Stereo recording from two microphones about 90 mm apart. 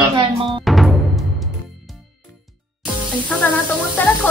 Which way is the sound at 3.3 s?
15° left (ahead or behind).